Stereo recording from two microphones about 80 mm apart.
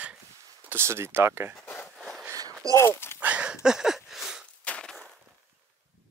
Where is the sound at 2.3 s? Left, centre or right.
Right.